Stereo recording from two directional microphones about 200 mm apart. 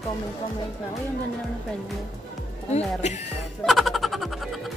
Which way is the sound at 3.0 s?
35° left (ahead or behind).